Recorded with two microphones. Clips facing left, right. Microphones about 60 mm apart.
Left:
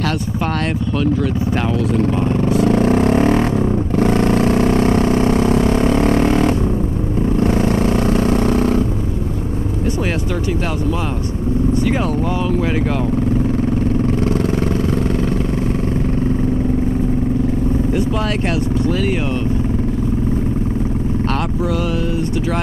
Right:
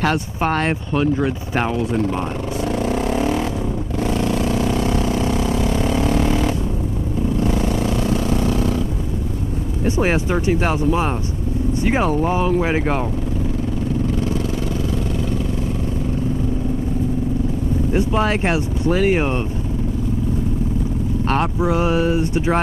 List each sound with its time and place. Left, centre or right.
0.0 s speech: right
2.5 s vehicle: left
9.9 s speech: right
17.9 s speech: right
21.3 s speech: right